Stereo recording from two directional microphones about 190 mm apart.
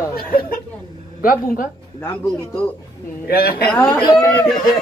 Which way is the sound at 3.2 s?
50° left (ahead or behind).